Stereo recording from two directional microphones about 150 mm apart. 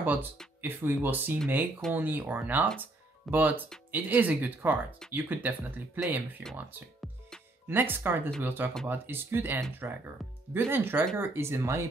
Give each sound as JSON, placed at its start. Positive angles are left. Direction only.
{"t": 0.0, "sound": "speech", "side_deg": -10}